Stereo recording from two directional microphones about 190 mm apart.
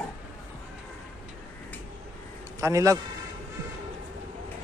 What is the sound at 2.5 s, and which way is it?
Speech, 15° right (ahead or behind).